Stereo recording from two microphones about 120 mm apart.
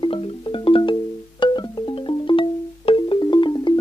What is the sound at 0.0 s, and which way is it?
Music, 45° left (ahead or behind).